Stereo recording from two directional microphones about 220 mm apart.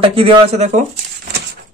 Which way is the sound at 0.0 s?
25° right (ahead or behind).